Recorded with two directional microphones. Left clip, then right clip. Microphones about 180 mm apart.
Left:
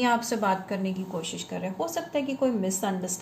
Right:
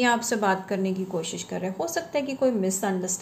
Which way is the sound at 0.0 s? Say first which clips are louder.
Right 2 dB; 25° right (ahead or behind).